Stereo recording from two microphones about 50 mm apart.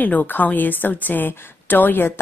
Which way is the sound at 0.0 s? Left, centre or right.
Left.